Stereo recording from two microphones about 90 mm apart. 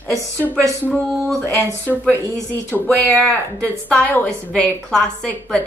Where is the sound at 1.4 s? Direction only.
35° right (ahead or behind).